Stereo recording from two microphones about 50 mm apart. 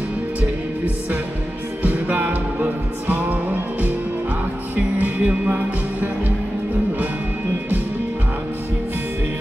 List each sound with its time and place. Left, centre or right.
1.8 s music: right